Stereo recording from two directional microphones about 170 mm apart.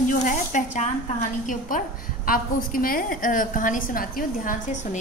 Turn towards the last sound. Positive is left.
turn(degrees=50)  # may be behind; listen again after turning